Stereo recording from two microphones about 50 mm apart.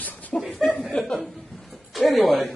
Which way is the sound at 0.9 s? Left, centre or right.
Centre.